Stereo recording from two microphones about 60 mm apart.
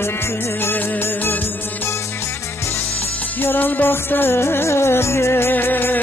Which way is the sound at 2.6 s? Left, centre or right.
Left.